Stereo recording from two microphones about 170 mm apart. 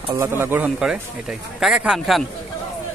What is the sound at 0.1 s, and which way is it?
Speech, 15° right (ahead or behind).